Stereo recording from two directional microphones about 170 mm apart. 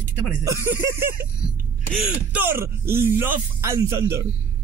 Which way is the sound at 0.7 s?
15° right (ahead or behind).